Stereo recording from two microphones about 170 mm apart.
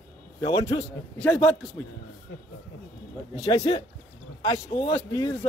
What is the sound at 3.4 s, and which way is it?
A man's voice, 35° left (ahead or behind).